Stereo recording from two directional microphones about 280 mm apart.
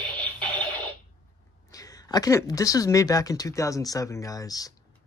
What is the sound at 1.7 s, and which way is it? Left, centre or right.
Speech, centre.